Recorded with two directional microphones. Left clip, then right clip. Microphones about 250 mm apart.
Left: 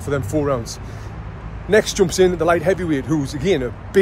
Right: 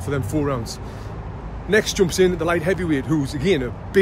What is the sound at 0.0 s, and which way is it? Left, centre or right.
Speech, centre.